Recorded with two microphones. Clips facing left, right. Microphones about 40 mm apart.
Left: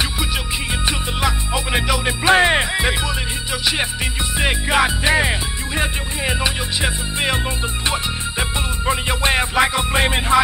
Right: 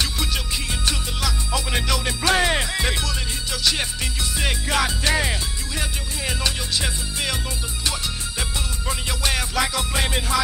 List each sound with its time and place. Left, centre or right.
0.8 s music: left